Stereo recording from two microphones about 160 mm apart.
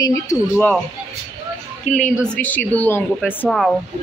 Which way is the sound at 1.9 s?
10° left (ahead or behind).